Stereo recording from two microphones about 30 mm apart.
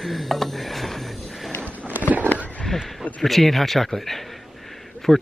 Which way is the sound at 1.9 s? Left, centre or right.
Right.